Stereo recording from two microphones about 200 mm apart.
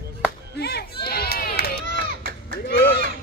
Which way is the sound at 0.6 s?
55° left (ahead or behind).